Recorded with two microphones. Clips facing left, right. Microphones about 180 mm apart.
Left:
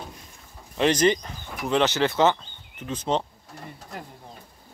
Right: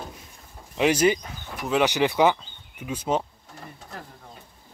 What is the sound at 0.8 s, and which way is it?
Speech, 10° right (ahead or behind).